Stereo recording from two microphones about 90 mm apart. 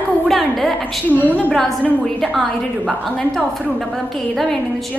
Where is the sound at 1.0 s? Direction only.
20° left (ahead or behind).